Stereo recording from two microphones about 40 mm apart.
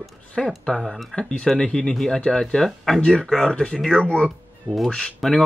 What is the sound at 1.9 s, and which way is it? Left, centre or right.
Speech, centre.